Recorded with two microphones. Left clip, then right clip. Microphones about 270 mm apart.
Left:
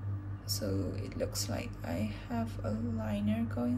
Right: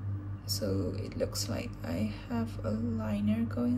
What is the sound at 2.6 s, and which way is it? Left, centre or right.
Speech, centre.